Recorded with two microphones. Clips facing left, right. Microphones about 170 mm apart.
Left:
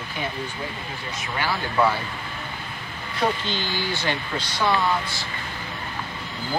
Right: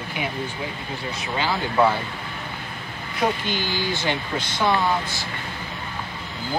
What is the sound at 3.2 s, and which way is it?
Speech, 15° right (ahead or behind).